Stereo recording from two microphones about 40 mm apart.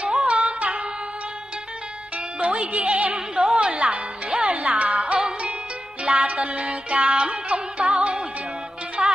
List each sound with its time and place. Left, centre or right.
0.0 s music: right
2.4 s music: right
3.3 s a sound: right
4.3 s music: right